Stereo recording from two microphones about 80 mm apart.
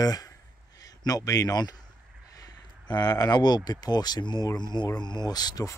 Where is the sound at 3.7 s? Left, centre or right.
Left.